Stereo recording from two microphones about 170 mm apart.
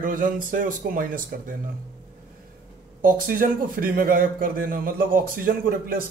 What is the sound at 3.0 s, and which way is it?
A man's voice, 55° right (ahead or behind).